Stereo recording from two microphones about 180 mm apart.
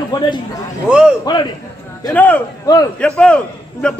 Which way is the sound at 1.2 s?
25° left (ahead or behind).